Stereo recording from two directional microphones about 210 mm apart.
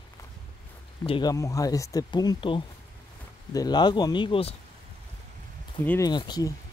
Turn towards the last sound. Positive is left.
turn(degrees=20)  # may be behind; listen again after turning